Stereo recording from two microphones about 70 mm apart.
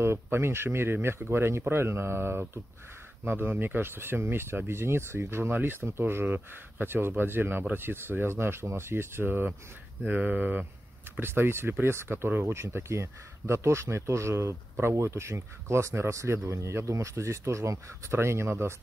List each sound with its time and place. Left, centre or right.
0.0 s speech: right